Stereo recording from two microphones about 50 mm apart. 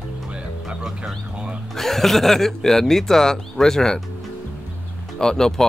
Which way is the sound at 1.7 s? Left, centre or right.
Centre.